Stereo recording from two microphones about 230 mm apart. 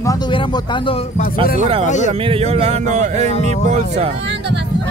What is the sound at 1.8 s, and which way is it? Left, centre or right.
Speech, left.